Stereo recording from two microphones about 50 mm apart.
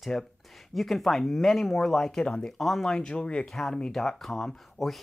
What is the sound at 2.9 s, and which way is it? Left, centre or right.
Speech, centre.